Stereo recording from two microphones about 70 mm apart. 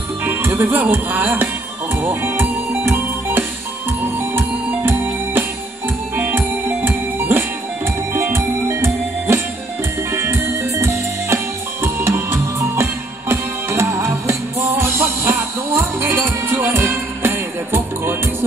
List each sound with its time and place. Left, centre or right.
0.2 s music: right
0.5 s speech: right
0.9 s music: right
7.2 s music: right